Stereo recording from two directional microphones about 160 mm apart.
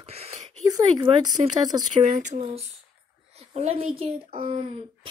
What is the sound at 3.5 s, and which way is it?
Speech, 40° right (ahead or behind).